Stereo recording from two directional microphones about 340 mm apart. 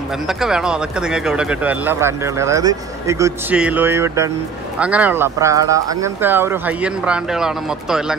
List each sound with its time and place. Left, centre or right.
0.3 s speech: centre